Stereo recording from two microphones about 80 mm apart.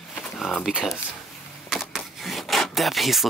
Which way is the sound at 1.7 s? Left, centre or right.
Centre.